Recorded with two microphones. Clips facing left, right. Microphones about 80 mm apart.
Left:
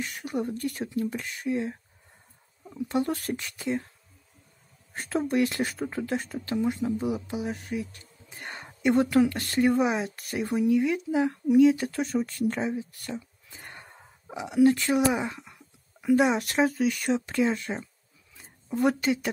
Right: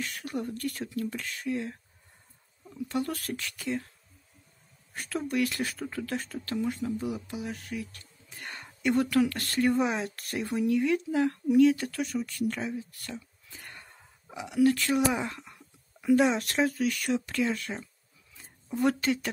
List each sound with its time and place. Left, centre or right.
0.0 s speech: centre
4.9 s speech: left
12.0 s speech: left
18.3 s a sound: centre